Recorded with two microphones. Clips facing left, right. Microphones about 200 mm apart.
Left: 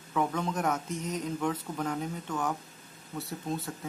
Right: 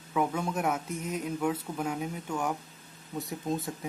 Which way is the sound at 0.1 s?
10° right (ahead or behind).